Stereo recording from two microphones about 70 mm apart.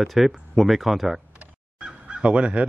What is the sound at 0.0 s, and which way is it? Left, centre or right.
Speech, centre.